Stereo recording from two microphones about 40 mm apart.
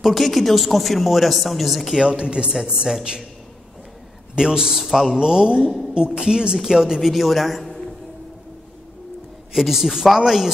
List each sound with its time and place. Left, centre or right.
0.0 s a man's voice: centre
2.0 s speech: right
4.4 s speech: centre
4.8 s a man's voice: centre
5.1 s speech: centre
7.0 s a man's voice: centre
9.5 s speech: centre